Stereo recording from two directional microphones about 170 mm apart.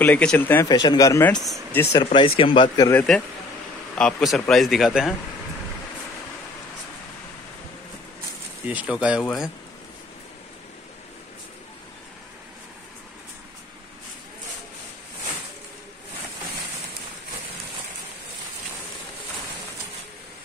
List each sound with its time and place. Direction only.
0.0 s speech: 5° left (ahead or behind)
0.7 s speech: 25° left (ahead or behind)
1.3 s speech: centre (ahead or behind)
1.8 s speech: 20° left (ahead or behind)
2.0 s speech: 35° left (ahead or behind)
2.9 s speech: 10° left (ahead or behind)
4.0 s speech: centre (ahead or behind)
8.6 s speech: 10° right (ahead or behind)
9.2 s speech: centre (ahead or behind)